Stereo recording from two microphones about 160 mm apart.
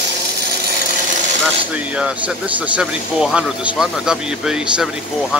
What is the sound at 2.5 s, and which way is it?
Speech, 10° right (ahead or behind).